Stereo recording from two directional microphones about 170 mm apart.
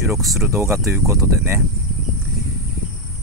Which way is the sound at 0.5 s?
15° right (ahead or behind).